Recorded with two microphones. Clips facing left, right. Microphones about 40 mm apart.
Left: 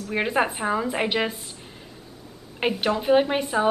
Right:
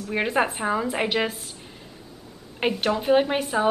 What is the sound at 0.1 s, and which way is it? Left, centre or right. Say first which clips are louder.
Speech: even; centre.